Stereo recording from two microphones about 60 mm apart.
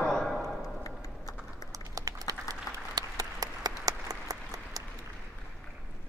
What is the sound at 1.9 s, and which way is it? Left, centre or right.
Applause, right.